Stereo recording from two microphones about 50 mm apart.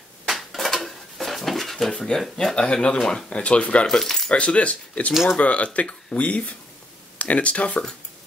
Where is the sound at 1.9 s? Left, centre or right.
Centre.